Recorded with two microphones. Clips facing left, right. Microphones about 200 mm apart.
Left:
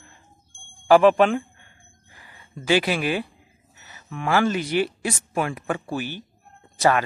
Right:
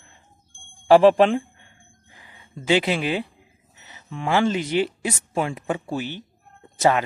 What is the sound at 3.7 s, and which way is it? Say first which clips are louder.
Speech: even; 20° right (ahead or behind).